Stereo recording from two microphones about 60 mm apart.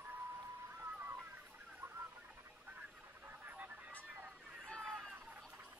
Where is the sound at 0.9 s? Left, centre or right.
Right.